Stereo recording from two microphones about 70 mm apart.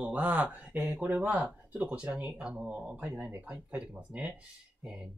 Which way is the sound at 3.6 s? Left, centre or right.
Centre.